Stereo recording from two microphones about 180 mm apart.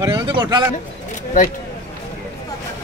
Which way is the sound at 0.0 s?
25° right (ahead or behind).